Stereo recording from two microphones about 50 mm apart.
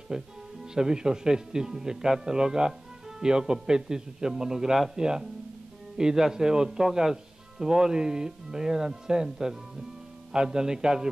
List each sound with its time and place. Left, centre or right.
0.1 s speech: centre